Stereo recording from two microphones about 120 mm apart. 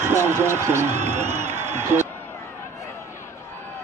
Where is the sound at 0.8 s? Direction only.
70° right (ahead or behind).